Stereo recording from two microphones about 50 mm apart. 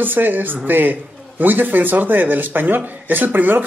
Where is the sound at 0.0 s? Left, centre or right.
Right.